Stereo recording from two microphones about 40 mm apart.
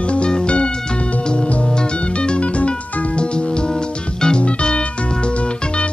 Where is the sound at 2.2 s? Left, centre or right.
Left.